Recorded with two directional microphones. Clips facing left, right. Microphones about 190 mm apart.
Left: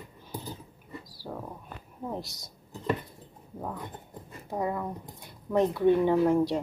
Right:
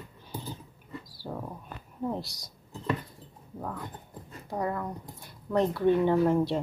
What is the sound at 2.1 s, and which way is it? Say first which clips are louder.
Dishes: even; 20° left (ahead or behind).